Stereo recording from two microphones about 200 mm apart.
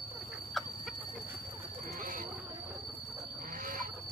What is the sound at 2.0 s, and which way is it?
Wild animals, 40° right (ahead or behind).